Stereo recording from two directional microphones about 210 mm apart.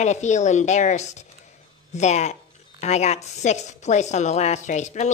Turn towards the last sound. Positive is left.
turn(degrees=35)  # may be behind; listen again after turning